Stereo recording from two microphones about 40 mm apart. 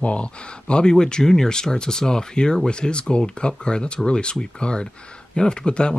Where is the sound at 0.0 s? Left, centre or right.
Left.